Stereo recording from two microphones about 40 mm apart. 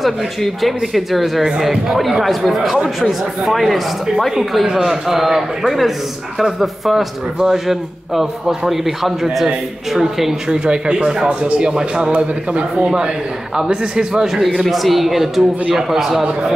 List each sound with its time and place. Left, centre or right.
0.6 s speech: centre
4.6 s a man's voice: centre
5.0 s a man's voice: centre
10.5 s a man's voice: right
14.2 s a man's voice: centre